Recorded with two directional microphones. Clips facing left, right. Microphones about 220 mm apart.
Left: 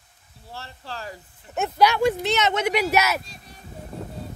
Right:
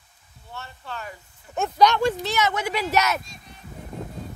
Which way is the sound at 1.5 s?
5° left (ahead or behind).